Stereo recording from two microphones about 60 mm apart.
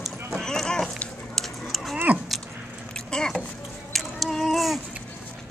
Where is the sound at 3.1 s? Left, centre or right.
Centre.